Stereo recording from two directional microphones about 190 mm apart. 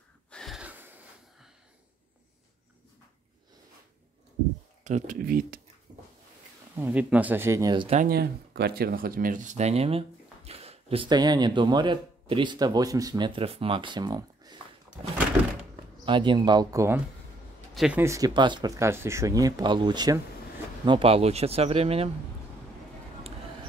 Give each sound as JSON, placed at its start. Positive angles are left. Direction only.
{"t": 0.3, "sound": "gasp", "side_deg": 0}
{"t": 4.8, "sound": "speech", "side_deg": -40}
{"t": 6.8, "sound": "speech", "side_deg": -10}
{"t": 7.9, "sound": "speech", "side_deg": -45}
{"t": 16.1, "sound": "speech", "side_deg": -25}
{"t": 17.7, "sound": "speech", "side_deg": -5}
{"t": 18.0, "sound": "speech", "side_deg": -20}